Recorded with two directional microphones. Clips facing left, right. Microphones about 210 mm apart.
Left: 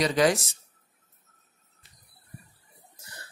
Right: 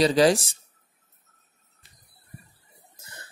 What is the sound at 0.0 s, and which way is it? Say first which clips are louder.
Speech: right 4 dB; 30° right (ahead or behind).